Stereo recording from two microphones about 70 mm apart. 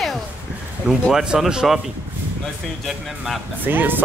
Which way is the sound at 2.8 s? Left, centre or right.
Centre.